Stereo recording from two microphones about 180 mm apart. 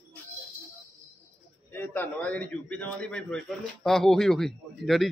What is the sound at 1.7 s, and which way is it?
A man's voice, 10° left (ahead or behind).